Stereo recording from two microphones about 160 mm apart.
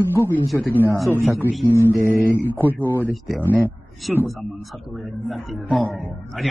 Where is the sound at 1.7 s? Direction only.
15° left (ahead or behind).